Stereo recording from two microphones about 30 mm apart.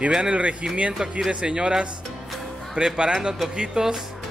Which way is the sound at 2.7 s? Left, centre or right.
Right.